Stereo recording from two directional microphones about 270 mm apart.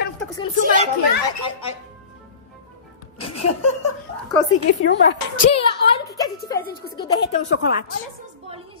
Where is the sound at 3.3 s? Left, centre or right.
Left.